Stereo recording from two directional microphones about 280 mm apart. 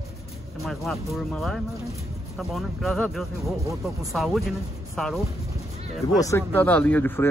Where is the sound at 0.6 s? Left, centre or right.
Centre.